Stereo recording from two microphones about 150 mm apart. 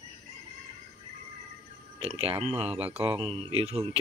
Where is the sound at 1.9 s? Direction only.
40° right (ahead or behind).